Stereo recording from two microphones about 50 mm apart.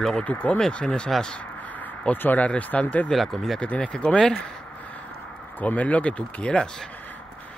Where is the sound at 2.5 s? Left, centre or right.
Left.